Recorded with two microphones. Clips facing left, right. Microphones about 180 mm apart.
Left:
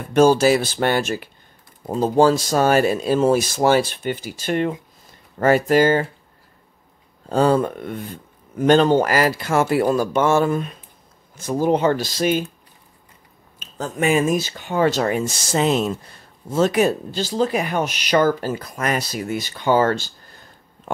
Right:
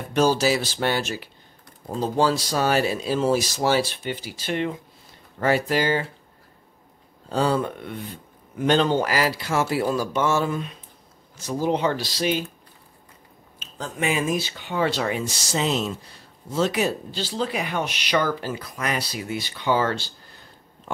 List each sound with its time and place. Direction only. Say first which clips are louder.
0.1 s speech: left 6 dB; 50° left (ahead or behind)
7.2 s speech: left 5 dB; 50° left (ahead or behind)
13.6 s speech: left 5 dB; 45° left (ahead or behind)